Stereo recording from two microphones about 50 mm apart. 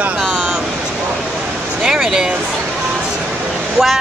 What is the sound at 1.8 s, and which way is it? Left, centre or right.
Speech, centre.